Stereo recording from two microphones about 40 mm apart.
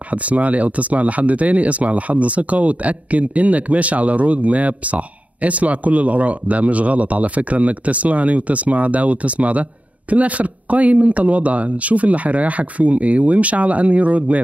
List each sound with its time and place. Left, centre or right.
0.1 s speech: right